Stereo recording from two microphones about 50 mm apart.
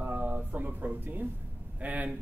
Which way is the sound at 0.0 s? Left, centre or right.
Right.